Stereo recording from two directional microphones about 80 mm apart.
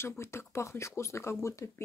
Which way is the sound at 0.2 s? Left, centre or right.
Left.